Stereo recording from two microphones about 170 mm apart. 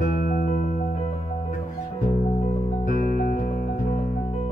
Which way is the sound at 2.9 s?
55° left (ahead or behind).